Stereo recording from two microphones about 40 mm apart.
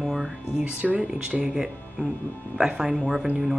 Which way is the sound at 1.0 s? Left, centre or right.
Centre.